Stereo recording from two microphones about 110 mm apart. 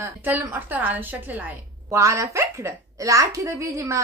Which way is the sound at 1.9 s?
30° right (ahead or behind).